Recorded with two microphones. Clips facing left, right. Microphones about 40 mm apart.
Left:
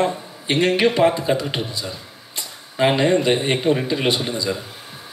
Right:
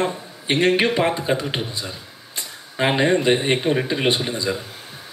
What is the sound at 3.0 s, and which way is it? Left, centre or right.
Speech, centre.